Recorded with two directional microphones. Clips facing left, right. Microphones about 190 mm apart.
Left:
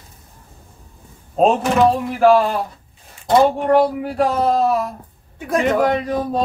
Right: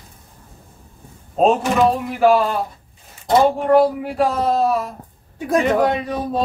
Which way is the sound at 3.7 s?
Centre (ahead or behind).